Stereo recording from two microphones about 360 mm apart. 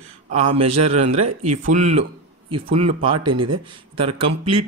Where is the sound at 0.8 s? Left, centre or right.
Centre.